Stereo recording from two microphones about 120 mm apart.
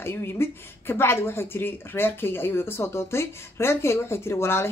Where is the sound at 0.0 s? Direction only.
20° left (ahead or behind).